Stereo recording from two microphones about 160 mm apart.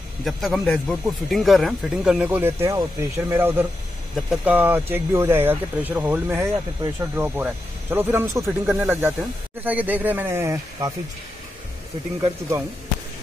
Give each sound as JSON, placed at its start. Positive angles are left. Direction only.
{"t": 0.2, "sound": "speech", "side_deg": 0}
{"t": 12.2, "sound": "speech", "side_deg": -20}